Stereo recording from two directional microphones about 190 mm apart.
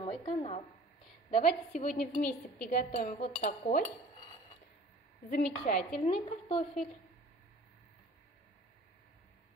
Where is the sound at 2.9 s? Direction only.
35° left (ahead or behind).